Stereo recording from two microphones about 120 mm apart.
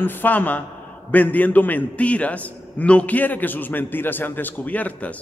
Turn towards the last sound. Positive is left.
turn(degrees=10)  # may be behind; listen again after turning